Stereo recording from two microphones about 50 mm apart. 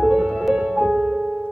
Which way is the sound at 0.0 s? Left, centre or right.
Centre.